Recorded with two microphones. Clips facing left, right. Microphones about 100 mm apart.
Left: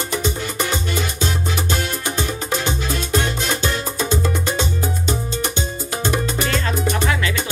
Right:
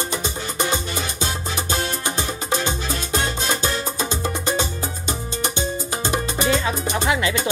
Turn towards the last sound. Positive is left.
turn(degrees=-20)  # may be behind; listen again after turning